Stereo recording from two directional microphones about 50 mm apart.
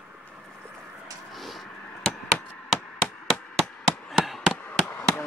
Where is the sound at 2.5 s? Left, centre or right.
Left.